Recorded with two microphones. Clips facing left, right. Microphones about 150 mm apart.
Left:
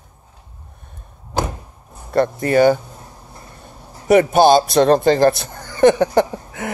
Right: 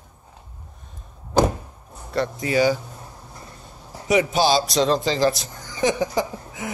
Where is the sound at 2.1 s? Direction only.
55° left (ahead or behind).